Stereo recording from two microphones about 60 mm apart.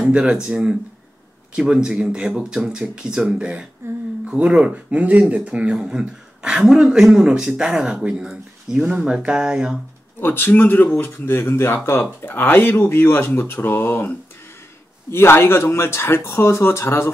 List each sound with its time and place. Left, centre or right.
0.1 s speech: centre
10.2 s speech: left